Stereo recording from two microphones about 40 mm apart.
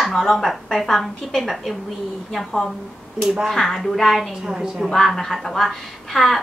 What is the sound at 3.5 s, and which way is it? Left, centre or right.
Speech, centre.